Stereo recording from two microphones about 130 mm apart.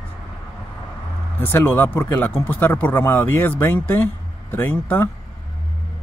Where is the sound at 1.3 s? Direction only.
15° left (ahead or behind).